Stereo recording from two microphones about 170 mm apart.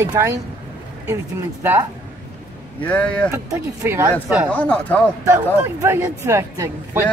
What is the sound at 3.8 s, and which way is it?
Speech, 15° right (ahead or behind).